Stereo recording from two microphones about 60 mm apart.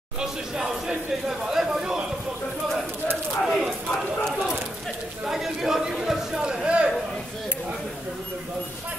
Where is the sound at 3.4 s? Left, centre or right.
Centre.